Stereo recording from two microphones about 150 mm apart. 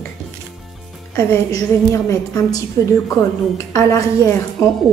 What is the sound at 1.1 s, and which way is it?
A woman's voice, 20° left (ahead or behind).